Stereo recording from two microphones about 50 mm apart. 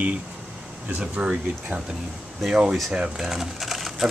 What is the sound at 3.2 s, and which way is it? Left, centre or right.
Speech, centre.